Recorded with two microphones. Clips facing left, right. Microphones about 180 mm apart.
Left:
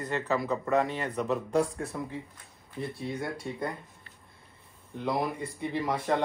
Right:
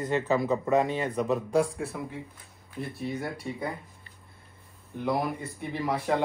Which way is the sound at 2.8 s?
5° right (ahead or behind).